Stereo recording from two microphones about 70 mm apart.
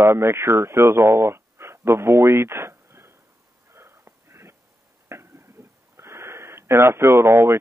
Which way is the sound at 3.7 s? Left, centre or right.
Right.